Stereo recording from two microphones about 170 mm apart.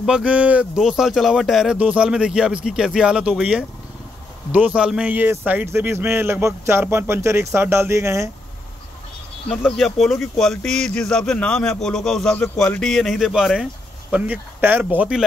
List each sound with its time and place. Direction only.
0.0 s speech: 5° right (ahead or behind)
9.5 s speech: 5° left (ahead or behind)